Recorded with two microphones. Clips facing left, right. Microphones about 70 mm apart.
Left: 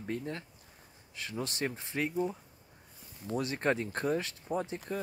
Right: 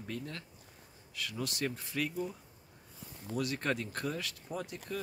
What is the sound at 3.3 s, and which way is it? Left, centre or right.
Speech, left.